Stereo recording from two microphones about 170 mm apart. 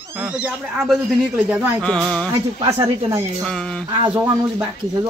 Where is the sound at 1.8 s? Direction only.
5° left (ahead or behind).